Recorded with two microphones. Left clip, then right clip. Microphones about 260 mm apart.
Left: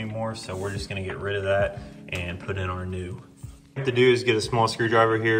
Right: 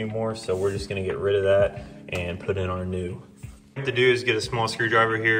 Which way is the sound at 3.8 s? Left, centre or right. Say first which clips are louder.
Left 1 dB; centre.